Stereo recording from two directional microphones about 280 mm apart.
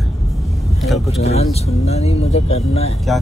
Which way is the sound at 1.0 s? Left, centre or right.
Left.